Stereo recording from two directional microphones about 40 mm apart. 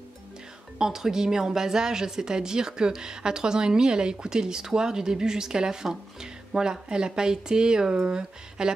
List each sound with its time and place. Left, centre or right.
0.7 s speech: centre